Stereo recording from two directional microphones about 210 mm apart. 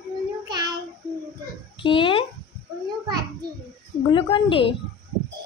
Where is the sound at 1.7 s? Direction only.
25° left (ahead or behind).